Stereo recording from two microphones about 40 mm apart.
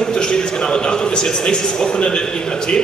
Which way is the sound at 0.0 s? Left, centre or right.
Centre.